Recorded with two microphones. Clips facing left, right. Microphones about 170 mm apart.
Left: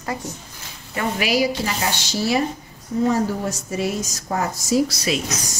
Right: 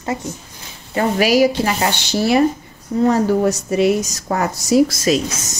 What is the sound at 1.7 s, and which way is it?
A woman's voice, 65° right (ahead or behind).